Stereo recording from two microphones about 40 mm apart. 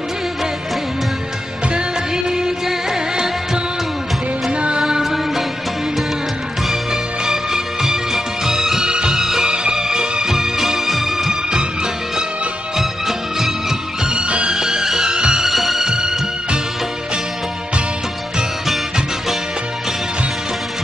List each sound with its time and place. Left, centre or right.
1.7 s music: centre
4.5 s music: right
4.8 s music: centre
6.7 s music: centre
14.1 s music: right
14.5 s music: centre
15.4 s music: centre